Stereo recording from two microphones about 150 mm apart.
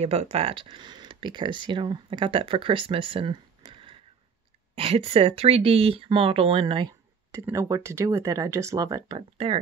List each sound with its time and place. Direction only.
0.0 s speech: 45° right (ahead or behind); by 9.2 s 25° right (ahead or behind)
9.4 s speech: 40° right (ahead or behind)